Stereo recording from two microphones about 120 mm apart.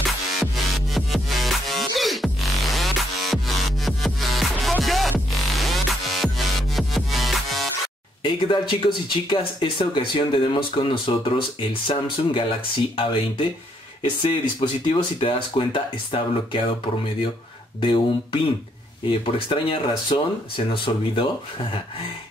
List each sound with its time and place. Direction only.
0.4 s music: centre (ahead or behind)
8.2 s speech: 45° left (ahead or behind)
14.6 s speech: 45° left (ahead or behind)
17.7 s speech: 45° left (ahead or behind)